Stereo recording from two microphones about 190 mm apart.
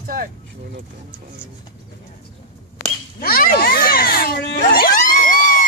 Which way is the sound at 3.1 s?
50° left (ahead or behind).